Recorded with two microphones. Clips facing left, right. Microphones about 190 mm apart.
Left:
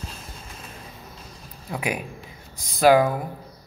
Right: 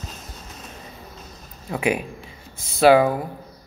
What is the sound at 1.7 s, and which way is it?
Speech, centre (ahead or behind).